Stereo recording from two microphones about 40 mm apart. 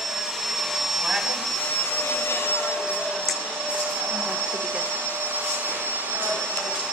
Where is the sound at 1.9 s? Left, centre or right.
Left.